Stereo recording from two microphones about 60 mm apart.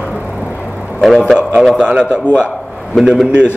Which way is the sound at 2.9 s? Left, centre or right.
Centre.